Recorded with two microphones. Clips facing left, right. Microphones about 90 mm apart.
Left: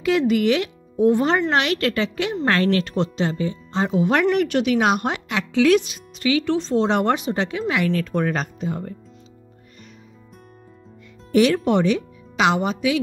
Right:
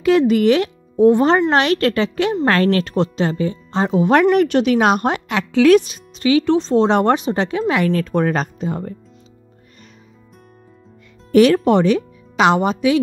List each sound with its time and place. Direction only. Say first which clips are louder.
0.0 s speech: right 5 dB; 40° right (ahead or behind)
2.4 s speech: right 2 dB; 50° right (ahead or behind)
11.3 s a woman's voice: right 5 dB; 50° right (ahead or behind)